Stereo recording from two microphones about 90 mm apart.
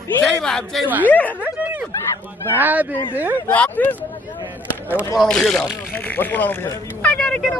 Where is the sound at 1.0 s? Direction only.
20° left (ahead or behind).